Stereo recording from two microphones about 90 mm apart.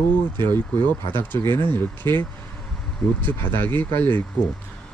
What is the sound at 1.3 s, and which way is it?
Speech, 20° left (ahead or behind).